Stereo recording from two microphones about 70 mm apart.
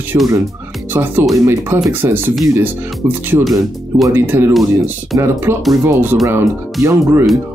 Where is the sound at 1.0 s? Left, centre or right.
Right.